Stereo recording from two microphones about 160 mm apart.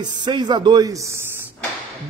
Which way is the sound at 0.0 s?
30° right (ahead or behind).